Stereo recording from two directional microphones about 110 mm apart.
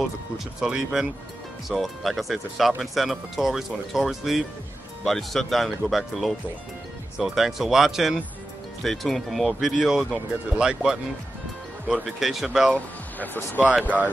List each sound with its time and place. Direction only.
0.6 s speech: 5° right (ahead or behind)
12.7 s speech: 15° left (ahead or behind)